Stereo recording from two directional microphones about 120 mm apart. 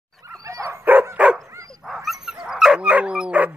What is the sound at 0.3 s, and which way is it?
Dog, 25° right (ahead or behind).